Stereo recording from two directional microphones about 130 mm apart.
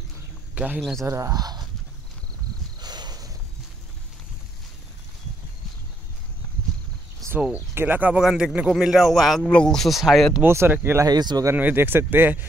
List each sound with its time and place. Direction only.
0.7 s a man's voice: 5° left (ahead or behind)
1.0 s speech: 25° right (ahead or behind)
2.8 s a sound: 30° right (ahead or behind)
7.7 s a man's voice: 15° right (ahead or behind)
10.4 s speech: 20° right (ahead or behind)
11.1 s speech: 30° right (ahead or behind)
11.5 s speech: 15° right (ahead or behind)